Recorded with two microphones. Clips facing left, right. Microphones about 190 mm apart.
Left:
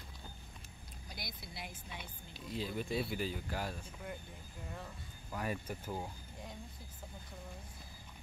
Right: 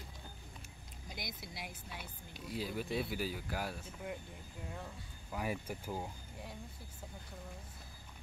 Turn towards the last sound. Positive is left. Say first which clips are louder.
# even
turn(degrees=-10)  # may be behind; listen again after turning